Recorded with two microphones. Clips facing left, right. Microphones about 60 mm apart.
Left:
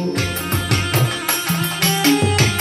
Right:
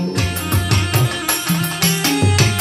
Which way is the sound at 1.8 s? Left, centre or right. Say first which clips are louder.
Left 6 dB; left.